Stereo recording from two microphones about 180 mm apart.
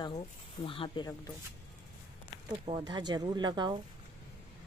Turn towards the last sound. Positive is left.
turn(degrees=-25)  # may be behind; listen again after turning